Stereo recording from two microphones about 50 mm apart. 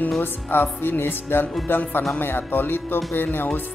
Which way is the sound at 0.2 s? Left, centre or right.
Left.